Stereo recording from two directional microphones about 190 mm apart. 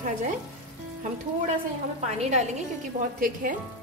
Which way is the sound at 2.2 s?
35° right (ahead or behind).